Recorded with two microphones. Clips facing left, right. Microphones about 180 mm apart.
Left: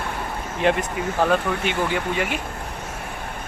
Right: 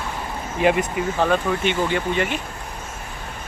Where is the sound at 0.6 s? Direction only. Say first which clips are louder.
Right 2 dB; 5° right (ahead or behind).